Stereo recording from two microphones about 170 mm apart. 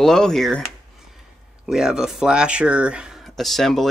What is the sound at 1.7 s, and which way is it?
Speech, 5° right (ahead or behind).